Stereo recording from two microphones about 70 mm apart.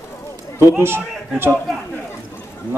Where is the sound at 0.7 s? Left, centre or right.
Right.